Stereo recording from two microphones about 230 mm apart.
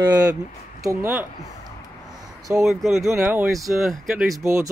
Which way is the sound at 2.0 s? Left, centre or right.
Centre.